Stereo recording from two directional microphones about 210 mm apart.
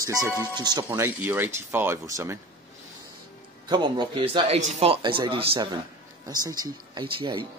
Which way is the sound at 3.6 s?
20° right (ahead or behind).